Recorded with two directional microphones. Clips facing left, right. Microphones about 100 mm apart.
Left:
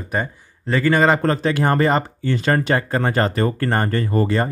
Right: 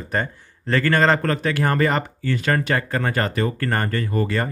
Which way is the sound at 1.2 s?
25° left (ahead or behind).